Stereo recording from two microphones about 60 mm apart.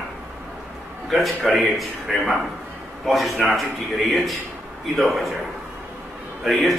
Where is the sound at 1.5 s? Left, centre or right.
Centre.